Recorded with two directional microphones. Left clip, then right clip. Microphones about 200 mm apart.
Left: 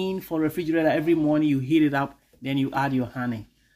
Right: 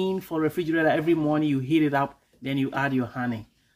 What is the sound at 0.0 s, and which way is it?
Speech, centre (ahead or behind).